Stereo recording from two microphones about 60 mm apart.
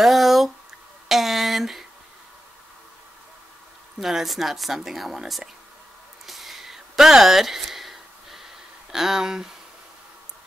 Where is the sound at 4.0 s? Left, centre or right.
Centre.